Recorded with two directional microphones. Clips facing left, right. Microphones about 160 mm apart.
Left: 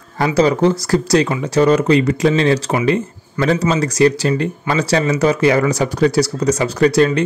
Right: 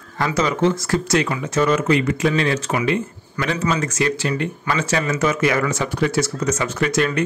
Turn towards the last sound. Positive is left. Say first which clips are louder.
# left 7 dB
turn(degrees=35)  # may be behind; listen again after turning